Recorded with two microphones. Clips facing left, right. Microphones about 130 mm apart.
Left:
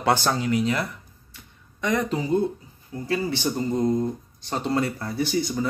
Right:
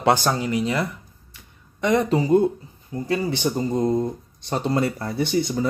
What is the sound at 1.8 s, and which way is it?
Speech, 25° right (ahead or behind).